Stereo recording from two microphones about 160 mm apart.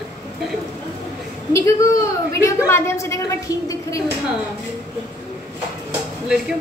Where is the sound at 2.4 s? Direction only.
15° left (ahead or behind).